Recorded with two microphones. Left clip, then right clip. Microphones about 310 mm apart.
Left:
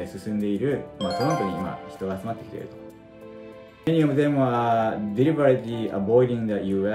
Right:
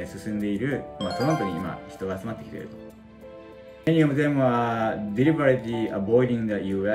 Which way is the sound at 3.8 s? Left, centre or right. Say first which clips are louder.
Even; centre.